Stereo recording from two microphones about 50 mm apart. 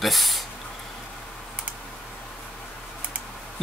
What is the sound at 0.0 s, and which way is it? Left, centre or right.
Speech, centre.